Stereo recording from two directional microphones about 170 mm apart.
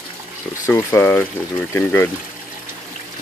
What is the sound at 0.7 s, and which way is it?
Speech, 15° left (ahead or behind).